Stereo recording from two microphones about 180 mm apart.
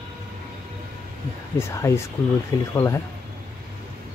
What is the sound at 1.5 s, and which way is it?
Speech, 15° left (ahead or behind).